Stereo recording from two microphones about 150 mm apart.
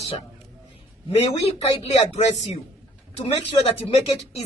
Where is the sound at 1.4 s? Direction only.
45° left (ahead or behind).